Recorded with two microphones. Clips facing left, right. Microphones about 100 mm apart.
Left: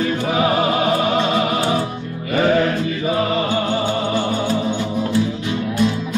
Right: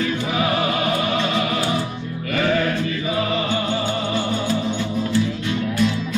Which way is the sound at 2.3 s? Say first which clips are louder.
Left 4 dB; 25° left (ahead or behind).